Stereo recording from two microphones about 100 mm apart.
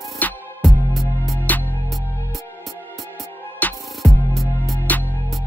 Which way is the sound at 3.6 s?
15° left (ahead or behind).